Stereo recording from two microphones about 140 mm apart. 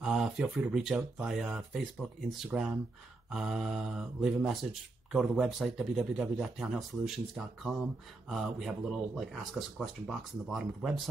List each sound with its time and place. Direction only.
0.0 s speech: 5° right (ahead or behind)